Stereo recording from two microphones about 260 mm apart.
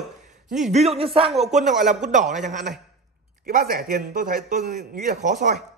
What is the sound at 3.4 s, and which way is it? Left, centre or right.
A man's voice, right.